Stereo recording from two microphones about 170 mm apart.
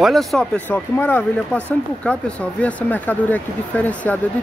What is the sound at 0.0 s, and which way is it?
Speech, centre (ahead or behind).